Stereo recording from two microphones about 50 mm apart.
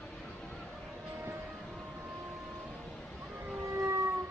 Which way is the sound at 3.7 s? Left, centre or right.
Right.